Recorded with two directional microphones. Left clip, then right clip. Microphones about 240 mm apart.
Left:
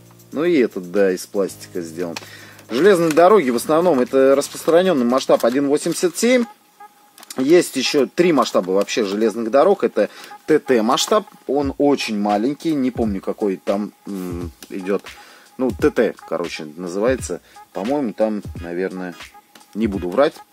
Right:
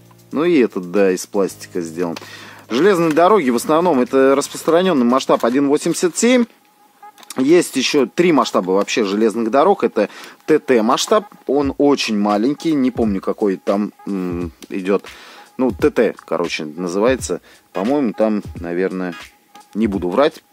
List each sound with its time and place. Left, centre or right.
0.3 s speech: right